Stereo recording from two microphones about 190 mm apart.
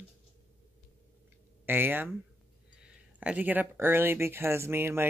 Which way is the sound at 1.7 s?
10° right (ahead or behind).